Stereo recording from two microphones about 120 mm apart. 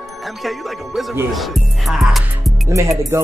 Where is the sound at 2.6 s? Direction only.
25° right (ahead or behind).